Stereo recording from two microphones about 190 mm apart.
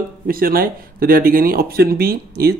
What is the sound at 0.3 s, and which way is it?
Speech, 50° right (ahead or behind).